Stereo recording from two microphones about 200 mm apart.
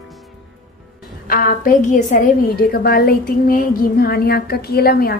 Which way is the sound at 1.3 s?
45° left (ahead or behind).